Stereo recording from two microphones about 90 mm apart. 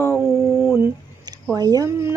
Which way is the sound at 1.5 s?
45° right (ahead or behind).